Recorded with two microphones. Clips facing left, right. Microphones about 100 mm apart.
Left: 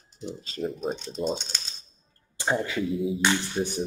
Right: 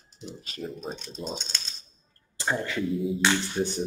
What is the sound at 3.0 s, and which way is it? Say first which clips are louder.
Music: even; centre (ahead or behind).